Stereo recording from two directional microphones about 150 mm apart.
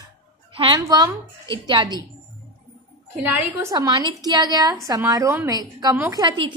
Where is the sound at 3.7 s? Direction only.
25° right (ahead or behind).